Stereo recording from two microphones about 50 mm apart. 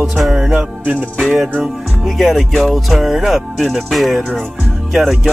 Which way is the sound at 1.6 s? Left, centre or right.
Centre.